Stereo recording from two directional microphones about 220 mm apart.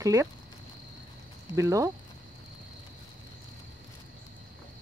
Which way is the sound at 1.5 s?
15° right (ahead or behind).